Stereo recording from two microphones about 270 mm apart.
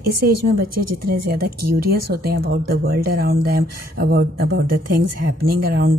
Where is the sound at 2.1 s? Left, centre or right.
Right.